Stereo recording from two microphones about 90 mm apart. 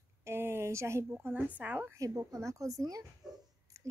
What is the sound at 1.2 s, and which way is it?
Speech, 20° right (ahead or behind).